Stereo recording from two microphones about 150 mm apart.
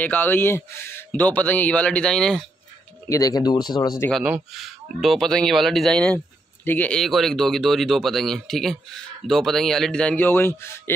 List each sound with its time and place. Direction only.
0.0 s speech: 10° left (ahead or behind)
3.1 s speech: 25° left (ahead or behind)
4.1 s speech: centre (ahead or behind); by 10.7 s 15° left (ahead or behind)